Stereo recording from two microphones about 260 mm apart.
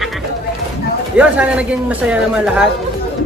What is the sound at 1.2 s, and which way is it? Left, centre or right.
Speech, centre.